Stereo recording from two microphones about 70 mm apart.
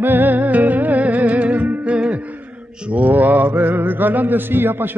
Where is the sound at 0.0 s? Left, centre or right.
Right.